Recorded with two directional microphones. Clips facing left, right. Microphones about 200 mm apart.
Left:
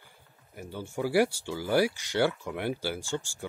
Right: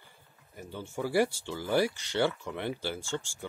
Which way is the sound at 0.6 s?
10° left (ahead or behind).